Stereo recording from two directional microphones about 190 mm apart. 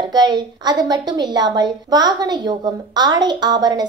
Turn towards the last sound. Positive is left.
turn(degrees=-20)  # may be behind; listen again after turning